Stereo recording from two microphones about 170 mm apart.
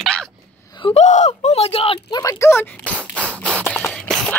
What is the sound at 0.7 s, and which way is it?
Speech, 30° left (ahead or behind).